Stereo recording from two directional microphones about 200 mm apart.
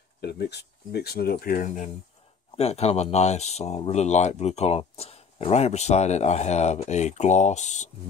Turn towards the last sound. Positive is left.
turn(degrees=35)  # may be behind; listen again after turning